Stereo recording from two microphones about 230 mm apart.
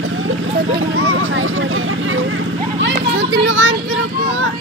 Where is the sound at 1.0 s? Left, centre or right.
Right.